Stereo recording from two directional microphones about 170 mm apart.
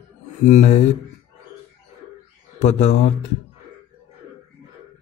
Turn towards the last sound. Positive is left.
turn(degrees=40)  # may be behind; listen again after turning